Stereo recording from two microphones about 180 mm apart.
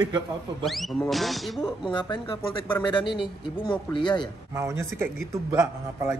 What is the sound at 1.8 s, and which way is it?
Speech, 25° left (ahead or behind).